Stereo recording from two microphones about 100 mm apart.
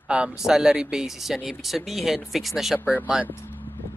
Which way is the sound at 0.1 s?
10° right (ahead or behind).